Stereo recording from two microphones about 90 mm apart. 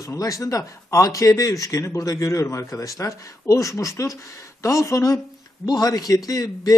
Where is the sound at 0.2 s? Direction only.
40° left (ahead or behind).